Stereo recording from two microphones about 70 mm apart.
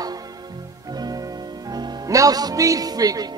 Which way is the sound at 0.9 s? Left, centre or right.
Right.